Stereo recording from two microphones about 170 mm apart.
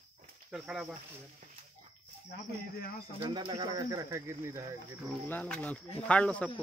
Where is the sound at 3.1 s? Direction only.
25° right (ahead or behind).